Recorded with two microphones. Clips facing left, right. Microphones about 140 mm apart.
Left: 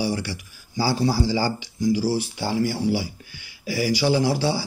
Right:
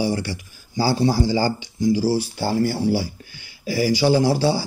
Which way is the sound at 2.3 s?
40° right (ahead or behind).